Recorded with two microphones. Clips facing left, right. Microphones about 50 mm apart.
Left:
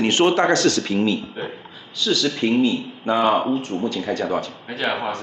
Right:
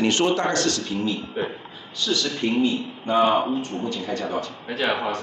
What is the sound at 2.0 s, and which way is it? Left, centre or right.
Speech, left.